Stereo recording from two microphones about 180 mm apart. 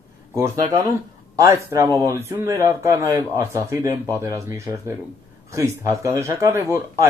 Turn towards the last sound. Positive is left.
turn(degrees=-15)  # may be behind; listen again after turning